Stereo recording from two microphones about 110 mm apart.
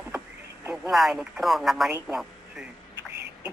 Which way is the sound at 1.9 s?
20° right (ahead or behind).